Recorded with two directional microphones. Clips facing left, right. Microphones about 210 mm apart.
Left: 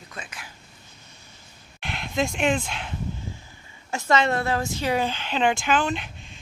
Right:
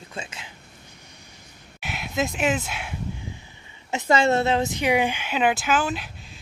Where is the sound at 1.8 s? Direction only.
5° right (ahead or behind).